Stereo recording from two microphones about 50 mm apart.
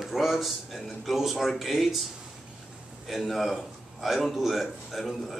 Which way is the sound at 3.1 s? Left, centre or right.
Centre.